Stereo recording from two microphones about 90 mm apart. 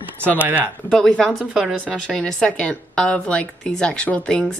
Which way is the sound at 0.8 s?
5° left (ahead or behind).